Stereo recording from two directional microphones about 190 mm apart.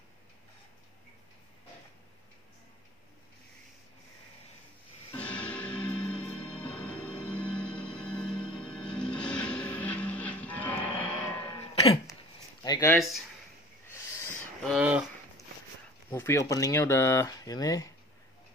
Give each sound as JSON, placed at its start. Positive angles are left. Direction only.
{"t": 5.1, "sound": "music", "side_deg": 5}
{"t": 11.7, "sound": "throat clearing", "side_deg": 30}
{"t": 12.6, "sound": "speech", "side_deg": 20}
{"t": 12.9, "sound": "speech", "side_deg": 0}
{"t": 13.8, "sound": "a sound", "side_deg": 15}
{"t": 14.7, "sound": "speech", "side_deg": -5}
{"t": 16.1, "sound": "speech", "side_deg": 15}